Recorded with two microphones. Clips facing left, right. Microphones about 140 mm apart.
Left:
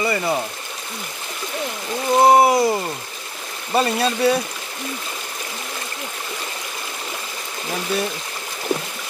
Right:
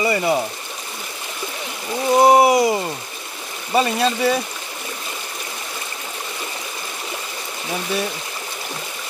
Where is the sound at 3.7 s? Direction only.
Centre (ahead or behind).